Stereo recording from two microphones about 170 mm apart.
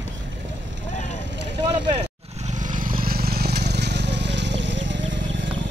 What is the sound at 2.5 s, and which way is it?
Vehicle, 50° right (ahead or behind).